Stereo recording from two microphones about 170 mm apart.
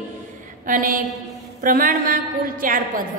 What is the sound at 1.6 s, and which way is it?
Speech, 55° right (ahead or behind).